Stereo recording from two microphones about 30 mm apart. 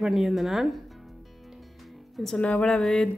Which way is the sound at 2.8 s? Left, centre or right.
Centre.